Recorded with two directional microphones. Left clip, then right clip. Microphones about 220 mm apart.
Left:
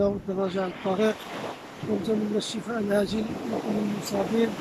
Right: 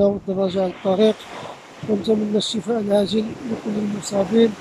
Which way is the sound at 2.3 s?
20° right (ahead or behind).